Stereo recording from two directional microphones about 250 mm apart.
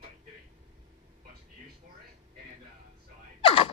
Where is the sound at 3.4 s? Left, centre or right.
Left.